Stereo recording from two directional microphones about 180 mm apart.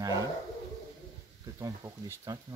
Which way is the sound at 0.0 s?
20° right (ahead or behind).